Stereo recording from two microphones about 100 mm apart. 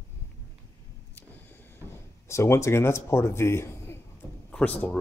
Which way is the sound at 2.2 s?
25° left (ahead or behind).